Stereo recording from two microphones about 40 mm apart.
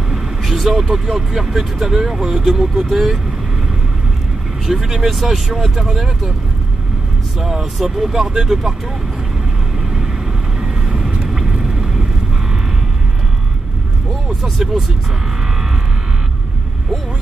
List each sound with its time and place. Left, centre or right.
0.1 s speech: centre
4.6 s speech: centre
7.3 s speech: centre
10.6 s vehicle: right
14.4 s speech: centre